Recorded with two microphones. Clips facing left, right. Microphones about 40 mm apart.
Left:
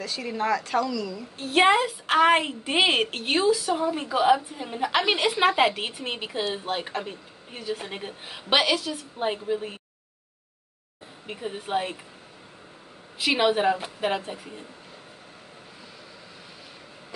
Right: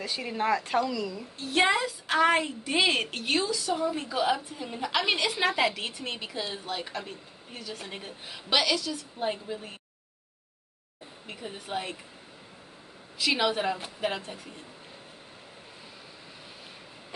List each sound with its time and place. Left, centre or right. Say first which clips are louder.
0.0 s speech: left 1 dB; centre
1.4 s a woman's voice: left 5 dB; left
5.1 s speech: left 4 dB; centre
5.4 s speech: left 5 dB; left
11.2 s speech: left 6 dB; centre
13.2 s speech: left 5 dB; left